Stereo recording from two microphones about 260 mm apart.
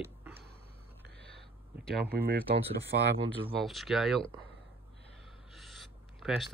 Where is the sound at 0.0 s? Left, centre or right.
Centre.